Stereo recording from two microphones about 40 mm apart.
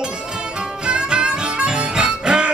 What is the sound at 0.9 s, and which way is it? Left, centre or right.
Harmonica, right.